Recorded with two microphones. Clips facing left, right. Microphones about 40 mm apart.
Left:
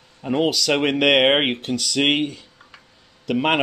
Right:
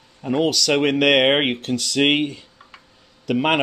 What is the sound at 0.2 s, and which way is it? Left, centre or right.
Speech, centre.